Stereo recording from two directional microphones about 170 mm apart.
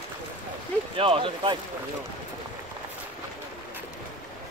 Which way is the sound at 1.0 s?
30° right (ahead or behind).